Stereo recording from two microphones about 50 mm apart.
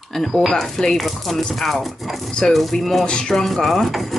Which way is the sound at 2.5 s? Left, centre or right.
Centre.